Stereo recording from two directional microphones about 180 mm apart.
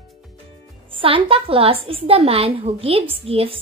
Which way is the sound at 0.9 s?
30° right (ahead or behind).